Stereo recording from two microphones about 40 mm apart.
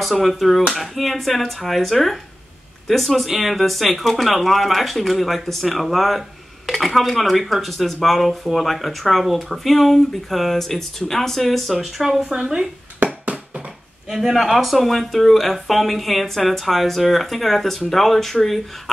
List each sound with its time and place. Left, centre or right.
0.0 s speech: centre
12.0 s speech: centre
13.0 s a sound: right
14.1 s speech: centre